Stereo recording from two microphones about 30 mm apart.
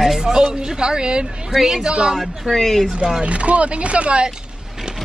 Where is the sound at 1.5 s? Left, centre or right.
Centre.